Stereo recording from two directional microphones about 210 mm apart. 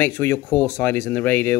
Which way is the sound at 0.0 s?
10° left (ahead or behind).